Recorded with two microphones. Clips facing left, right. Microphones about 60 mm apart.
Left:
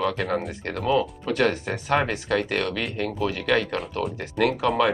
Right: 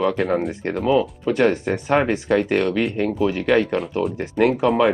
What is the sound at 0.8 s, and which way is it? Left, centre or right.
Speech, centre.